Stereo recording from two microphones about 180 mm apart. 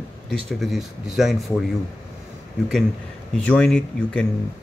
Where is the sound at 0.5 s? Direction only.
Centre (ahead or behind).